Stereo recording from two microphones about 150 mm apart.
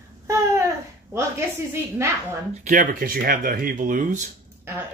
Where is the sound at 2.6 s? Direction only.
60° right (ahead or behind).